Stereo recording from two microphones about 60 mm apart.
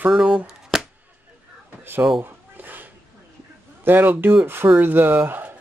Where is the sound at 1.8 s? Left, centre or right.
Right.